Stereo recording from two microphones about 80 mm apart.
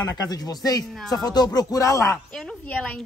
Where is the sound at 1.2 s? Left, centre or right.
Left.